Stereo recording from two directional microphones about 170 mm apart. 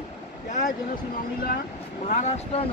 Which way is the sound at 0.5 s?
50° left (ahead or behind).